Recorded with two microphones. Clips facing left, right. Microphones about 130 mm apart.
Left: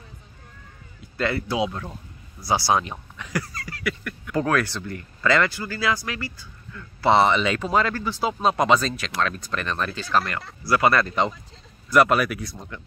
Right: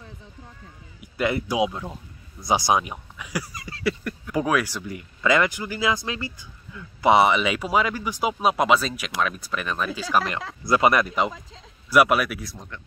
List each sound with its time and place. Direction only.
1.0 s speech: 15° right (ahead or behind)
3.6 s a sound: 30° right (ahead or behind)
4.3 s speech: 10° right (ahead or behind)
10.6 s speech: 20° right (ahead or behind); by 12.6 s centre (ahead or behind)